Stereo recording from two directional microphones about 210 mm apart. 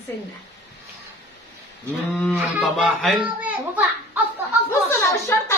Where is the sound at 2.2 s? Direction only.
Centre (ahead or behind).